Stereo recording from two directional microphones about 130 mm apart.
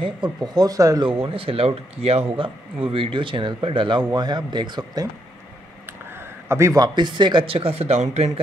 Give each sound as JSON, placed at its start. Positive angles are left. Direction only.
{"t": 0.0, "sound": "a man's voice", "side_deg": -35}
{"t": 1.0, "sound": "a man's voice", "side_deg": -45}
{"t": 6.1, "sound": "a man's voice", "side_deg": -20}